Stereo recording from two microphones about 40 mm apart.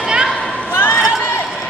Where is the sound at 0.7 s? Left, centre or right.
Left.